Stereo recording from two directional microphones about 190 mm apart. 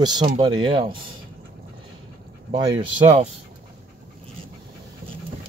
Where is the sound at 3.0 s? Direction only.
35° right (ahead or behind).